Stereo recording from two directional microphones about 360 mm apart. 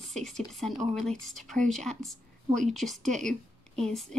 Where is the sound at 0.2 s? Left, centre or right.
Centre.